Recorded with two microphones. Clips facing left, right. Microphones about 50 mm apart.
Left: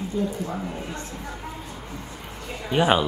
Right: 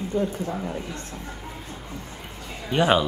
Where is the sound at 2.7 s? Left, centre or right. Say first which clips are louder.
Even; centre.